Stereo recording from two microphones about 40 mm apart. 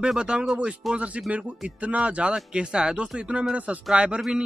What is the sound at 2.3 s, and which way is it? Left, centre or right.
Speech, right.